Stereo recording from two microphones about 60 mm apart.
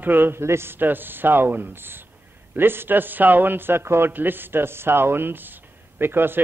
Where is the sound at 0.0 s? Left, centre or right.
Right.